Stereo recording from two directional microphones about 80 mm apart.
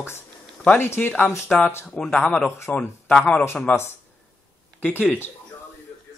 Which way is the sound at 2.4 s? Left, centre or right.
Left.